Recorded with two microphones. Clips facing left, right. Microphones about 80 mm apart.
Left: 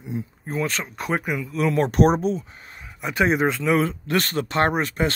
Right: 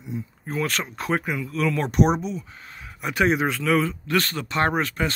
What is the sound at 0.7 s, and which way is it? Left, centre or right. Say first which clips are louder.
Speech: even; centre.